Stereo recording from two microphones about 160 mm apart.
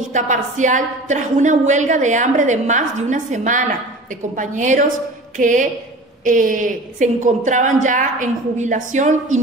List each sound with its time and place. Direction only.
0.1 s a woman's voice: 50° right (ahead or behind)